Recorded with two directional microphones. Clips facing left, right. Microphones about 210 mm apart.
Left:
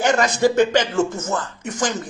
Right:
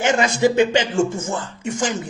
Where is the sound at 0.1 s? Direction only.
10° right (ahead or behind).